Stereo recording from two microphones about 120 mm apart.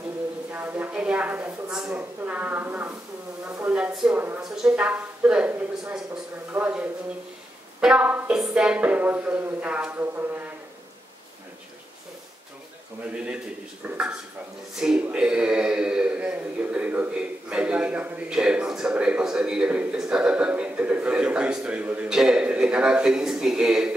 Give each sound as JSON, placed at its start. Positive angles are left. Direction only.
{"t": 0.5, "sound": "a woman's voice", "side_deg": -15}
{"t": 3.7, "sound": "speech", "side_deg": -5}
{"t": 13.0, "sound": "speech", "side_deg": -10}